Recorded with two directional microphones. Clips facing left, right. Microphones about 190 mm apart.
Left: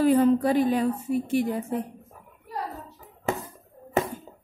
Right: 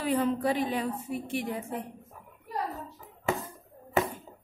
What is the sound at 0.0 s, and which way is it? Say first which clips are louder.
A woman's voice: left 8 dB; 45° left (ahead or behind).